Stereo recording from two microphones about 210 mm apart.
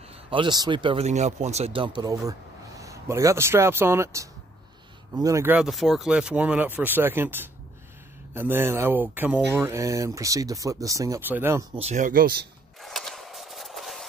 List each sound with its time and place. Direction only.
0.1 s speech: 25° right (ahead or behind)
11.7 s speech: 30° right (ahead or behind)
12.8 s a sound: centre (ahead or behind)